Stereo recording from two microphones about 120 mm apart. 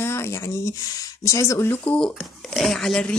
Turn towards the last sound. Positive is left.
turn(degrees=5)  # may be behind; listen again after turning